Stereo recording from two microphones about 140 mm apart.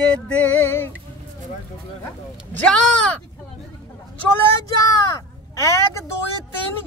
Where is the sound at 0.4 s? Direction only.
15° left (ahead or behind).